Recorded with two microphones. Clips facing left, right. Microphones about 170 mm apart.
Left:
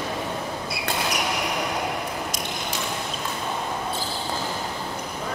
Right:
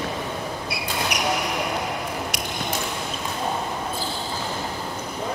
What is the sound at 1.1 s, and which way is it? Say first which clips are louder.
Basketball bounce: right 1 dB; 70° right (ahead or behind).